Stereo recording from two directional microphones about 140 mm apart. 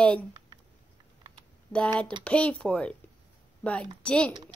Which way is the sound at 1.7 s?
10° left (ahead or behind).